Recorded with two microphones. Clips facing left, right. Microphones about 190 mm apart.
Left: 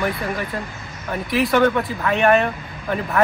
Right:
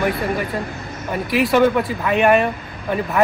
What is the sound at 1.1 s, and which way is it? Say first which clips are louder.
A man's voice: right 2 dB; centre (ahead or behind).